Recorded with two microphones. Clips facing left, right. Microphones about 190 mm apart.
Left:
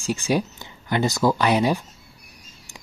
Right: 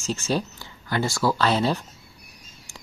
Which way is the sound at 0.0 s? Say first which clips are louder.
Left 3 dB; 15° left (ahead or behind).